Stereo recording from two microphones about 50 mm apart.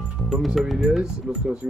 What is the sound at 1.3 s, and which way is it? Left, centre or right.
Speech, right.